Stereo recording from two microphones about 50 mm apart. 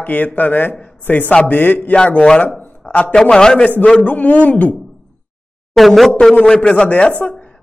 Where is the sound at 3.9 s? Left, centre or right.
Left.